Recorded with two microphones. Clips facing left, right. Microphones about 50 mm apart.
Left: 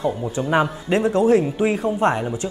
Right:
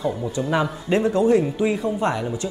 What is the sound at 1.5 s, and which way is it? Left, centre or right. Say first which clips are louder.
Speech: left 2 dB; left.